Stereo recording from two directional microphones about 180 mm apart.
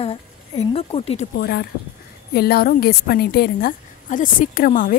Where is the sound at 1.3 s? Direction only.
65° left (ahead or behind).